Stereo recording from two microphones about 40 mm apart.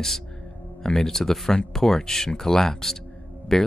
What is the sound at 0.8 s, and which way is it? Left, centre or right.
Speech, centre.